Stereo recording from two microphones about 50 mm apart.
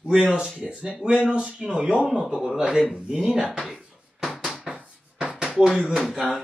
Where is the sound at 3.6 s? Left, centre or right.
Centre.